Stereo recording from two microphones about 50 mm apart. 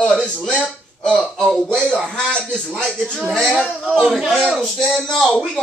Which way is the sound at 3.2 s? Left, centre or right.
Centre.